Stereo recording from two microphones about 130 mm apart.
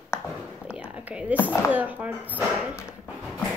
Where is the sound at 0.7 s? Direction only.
10° right (ahead or behind).